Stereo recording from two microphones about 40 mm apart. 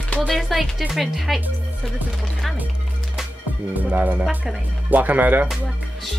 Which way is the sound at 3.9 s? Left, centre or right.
Right.